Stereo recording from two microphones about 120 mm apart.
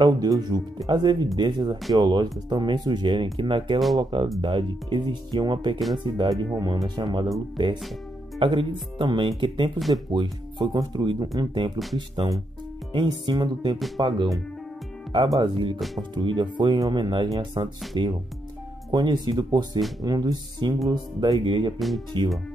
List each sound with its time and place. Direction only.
0.0 s speech: 35° right (ahead or behind)
15.3 s speech: 40° right (ahead or behind)
21.7 s speech: centre (ahead or behind)